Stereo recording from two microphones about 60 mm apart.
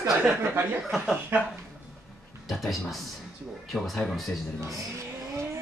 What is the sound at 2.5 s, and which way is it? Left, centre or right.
Speech, centre.